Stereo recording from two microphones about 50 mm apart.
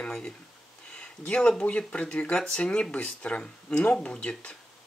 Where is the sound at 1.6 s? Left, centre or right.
Left.